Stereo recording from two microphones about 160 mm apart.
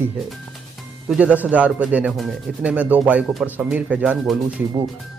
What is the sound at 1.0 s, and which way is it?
Speech, 10° right (ahead or behind).